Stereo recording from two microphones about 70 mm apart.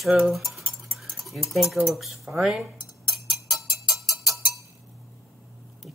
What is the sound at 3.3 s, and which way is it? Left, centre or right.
Music, centre.